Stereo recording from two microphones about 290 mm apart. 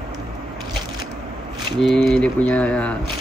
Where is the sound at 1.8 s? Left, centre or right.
Centre.